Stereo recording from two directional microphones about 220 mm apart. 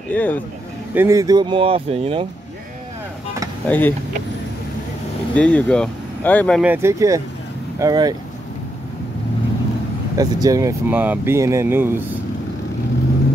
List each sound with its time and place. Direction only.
0.1 s speech: 10° left (ahead or behind)
0.9 s speech: 15° right (ahead or behind)
3.6 s speech: 10° left (ahead or behind)
5.3 s speech: 5° left (ahead or behind)
6.6 s speech: 10° right (ahead or behind)
10.1 s speech: 15° right (ahead or behind)